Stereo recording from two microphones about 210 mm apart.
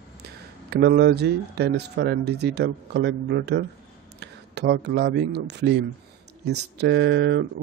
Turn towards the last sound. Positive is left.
turn(degrees=-55)  # may be behind; listen again after turning